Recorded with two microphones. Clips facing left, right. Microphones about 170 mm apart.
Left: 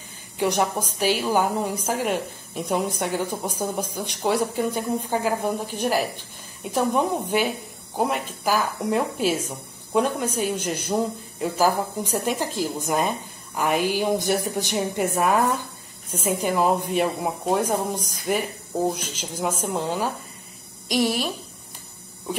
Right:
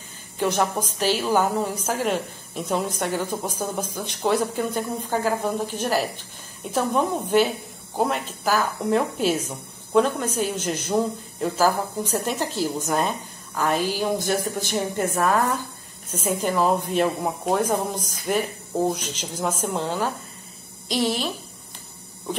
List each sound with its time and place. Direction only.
0.4 s speech: 15° left (ahead or behind)